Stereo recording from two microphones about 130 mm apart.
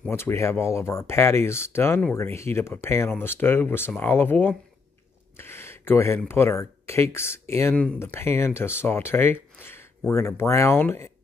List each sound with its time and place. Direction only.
0.1 s speech: 20° left (ahead or behind)